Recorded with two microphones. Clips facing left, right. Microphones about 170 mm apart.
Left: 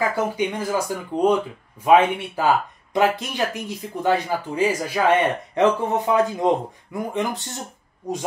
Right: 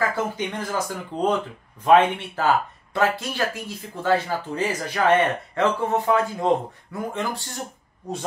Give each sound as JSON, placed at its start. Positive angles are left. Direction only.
{"t": 0.1, "sound": "speech", "side_deg": 10}